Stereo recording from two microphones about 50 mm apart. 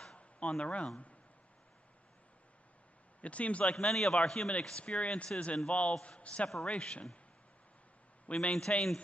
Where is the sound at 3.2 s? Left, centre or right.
Left.